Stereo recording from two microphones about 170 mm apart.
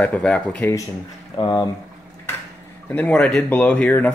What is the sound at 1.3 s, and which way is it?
Speech, 25° left (ahead or behind).